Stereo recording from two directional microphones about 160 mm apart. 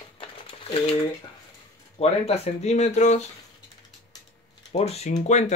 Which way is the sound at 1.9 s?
40° left (ahead or behind).